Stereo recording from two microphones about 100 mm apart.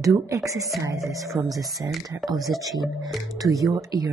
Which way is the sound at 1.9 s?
Centre (ahead or behind).